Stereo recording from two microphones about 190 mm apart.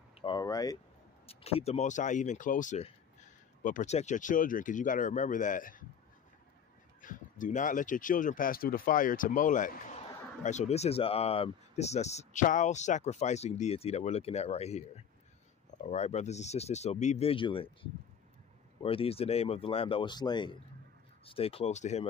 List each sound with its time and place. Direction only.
0.2 s speech: 20° left (ahead or behind)
1.2 s speech: 30° left (ahead or behind)
7.0 s speech: 45° left (ahead or behind); by 17.6 s 30° left (ahead or behind)
18.8 s speech: 30° left (ahead or behind)